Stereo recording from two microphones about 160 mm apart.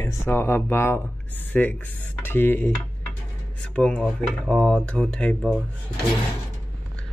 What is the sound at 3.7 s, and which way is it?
Speech, 5° left (ahead or behind).